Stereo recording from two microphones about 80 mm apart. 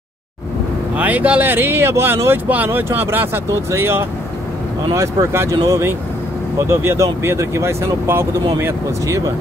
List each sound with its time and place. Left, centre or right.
0.9 s speech: centre; by 9.3 s right